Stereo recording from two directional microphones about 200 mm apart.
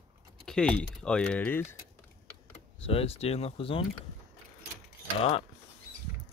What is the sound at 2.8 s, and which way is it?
Speech, 30° left (ahead or behind).